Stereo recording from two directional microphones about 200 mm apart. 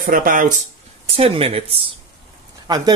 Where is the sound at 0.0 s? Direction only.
45° right (ahead or behind).